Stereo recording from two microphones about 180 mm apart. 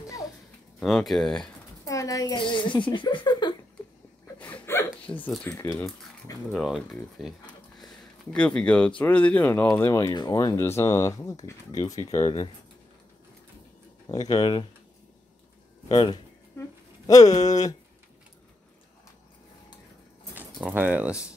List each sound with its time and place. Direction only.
0.7 s speech: centre (ahead or behind)
1.9 s a child's voice: 20° left (ahead or behind)
4.4 s a sound: 10° left (ahead or behind)
6.5 s speech: centre (ahead or behind); by 12.4 s 25° left (ahead or behind)
14.0 s speech: 20° left (ahead or behind)
15.9 s speech: 25° left (ahead or behind)
20.3 s speech: 10° right (ahead or behind)